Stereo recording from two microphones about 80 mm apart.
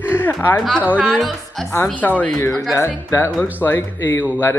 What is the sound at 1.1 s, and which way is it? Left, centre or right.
Speech, centre.